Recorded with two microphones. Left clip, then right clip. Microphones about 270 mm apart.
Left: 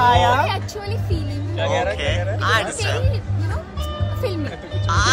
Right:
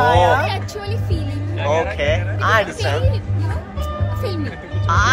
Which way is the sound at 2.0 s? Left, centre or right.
Centre.